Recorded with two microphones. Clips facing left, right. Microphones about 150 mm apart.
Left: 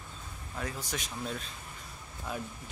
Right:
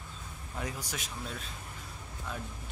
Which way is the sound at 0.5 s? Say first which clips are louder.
Left 1 dB; 15° right (ahead or behind).